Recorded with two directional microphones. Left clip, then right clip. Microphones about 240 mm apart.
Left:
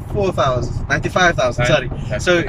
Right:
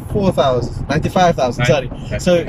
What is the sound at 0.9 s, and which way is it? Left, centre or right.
Speech, centre.